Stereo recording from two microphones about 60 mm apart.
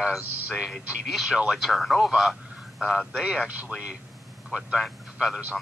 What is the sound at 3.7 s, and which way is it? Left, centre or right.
Speech, centre.